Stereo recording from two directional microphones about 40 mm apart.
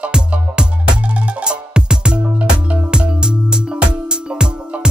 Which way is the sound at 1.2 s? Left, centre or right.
Right.